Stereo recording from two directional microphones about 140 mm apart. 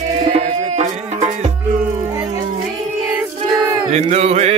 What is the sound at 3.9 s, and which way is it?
Chant, 50° right (ahead or behind).